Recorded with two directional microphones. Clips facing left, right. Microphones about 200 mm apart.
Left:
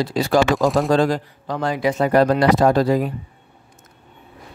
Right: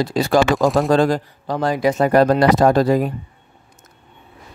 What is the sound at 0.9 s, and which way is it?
Speech, 50° right (ahead or behind).